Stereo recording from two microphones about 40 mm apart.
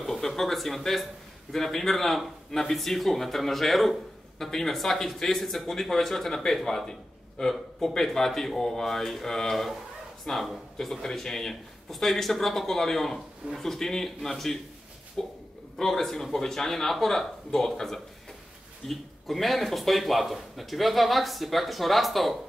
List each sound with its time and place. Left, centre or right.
0.0 s speech: centre